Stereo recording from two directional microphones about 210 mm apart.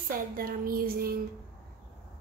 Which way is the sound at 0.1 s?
45° right (ahead or behind).